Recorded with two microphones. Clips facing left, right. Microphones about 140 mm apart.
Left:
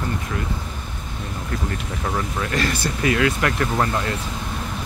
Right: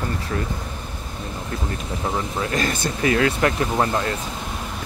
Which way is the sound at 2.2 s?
25° right (ahead or behind).